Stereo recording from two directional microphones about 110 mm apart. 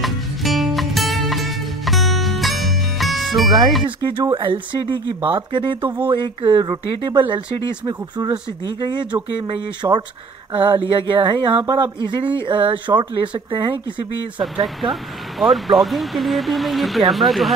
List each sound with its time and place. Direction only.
0.0 s music: centre (ahead or behind)
4.0 s speech: 35° right (ahead or behind)
4.4 s speech: 50° right (ahead or behind)
5.8 s speech: 20° right (ahead or behind)
6.0 s speech: 45° right (ahead or behind)
14.8 s speech: centre (ahead or behind)